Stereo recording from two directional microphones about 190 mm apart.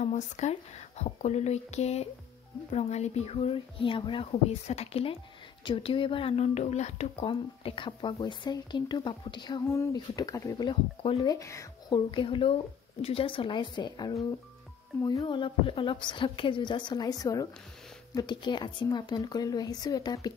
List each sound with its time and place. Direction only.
0.0 s speech: 40° left (ahead or behind)
11.3 s speech: 15° left (ahead or behind)